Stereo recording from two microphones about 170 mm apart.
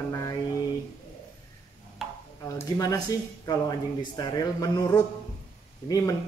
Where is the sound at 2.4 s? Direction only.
20° left (ahead or behind).